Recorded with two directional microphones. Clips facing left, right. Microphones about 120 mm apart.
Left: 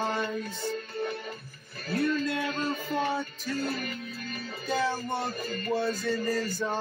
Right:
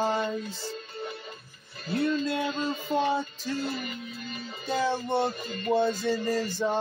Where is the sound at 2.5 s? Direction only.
55° left (ahead or behind).